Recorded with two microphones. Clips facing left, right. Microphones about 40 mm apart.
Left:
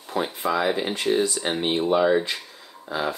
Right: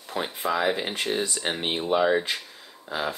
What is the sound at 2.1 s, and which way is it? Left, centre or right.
Speech, centre.